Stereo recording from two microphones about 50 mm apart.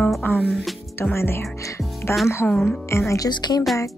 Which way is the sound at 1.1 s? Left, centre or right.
Left.